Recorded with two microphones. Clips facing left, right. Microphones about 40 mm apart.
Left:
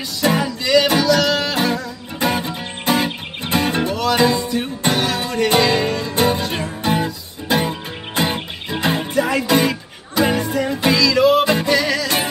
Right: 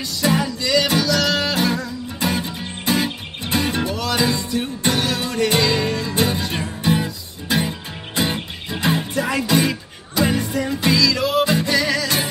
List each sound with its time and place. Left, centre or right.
0.2 s music: centre
9.1 s music: centre